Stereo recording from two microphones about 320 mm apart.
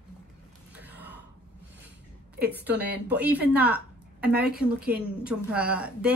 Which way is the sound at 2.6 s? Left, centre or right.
Centre.